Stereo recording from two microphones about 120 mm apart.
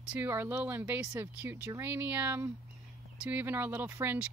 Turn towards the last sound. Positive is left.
turn(degrees=-15)  # may be behind; listen again after turning